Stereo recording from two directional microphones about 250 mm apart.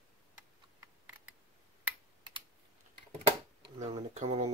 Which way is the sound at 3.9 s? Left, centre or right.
Right.